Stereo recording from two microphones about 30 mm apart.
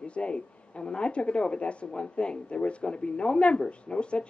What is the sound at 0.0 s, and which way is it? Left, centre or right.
A woman's voice, left.